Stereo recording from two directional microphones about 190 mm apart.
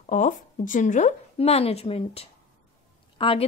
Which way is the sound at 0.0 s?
40° left (ahead or behind).